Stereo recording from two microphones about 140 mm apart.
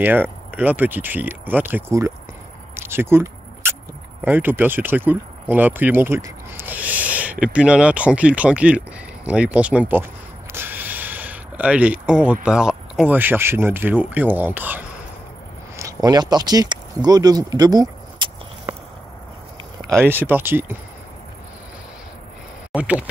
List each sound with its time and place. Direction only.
0.0 s speech: 15° right (ahead or behind)
2.7 s a sound: 15° right (ahead or behind)
4.2 s speech: 15° right (ahead or behind)
10.5 s a sound: 15° right (ahead or behind)
12.4 s speech: 5° right (ahead or behind)
15.7 s speech: 25° right (ahead or behind)
20.1 s speech: 15° right (ahead or behind)
22.7 s speech: 10° right (ahead or behind)